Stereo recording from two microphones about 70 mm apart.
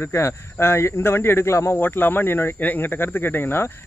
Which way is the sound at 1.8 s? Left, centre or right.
Left.